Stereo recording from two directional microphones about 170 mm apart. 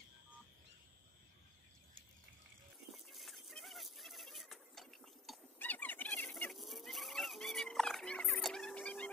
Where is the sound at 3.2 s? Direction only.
Centre (ahead or behind).